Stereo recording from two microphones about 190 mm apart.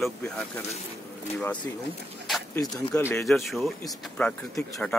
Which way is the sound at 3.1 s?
Centre (ahead or behind).